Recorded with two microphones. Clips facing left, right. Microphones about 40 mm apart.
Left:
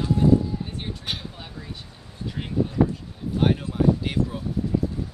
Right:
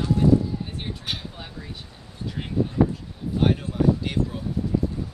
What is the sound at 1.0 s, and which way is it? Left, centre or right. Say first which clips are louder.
Speech: even; centre.